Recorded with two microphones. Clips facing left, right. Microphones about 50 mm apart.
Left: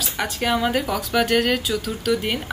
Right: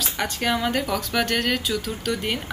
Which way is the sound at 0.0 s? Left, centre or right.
Centre.